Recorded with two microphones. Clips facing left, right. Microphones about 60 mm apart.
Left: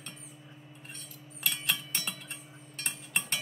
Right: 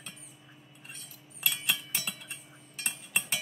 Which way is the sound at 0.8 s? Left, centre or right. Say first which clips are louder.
Right 1 dB; centre.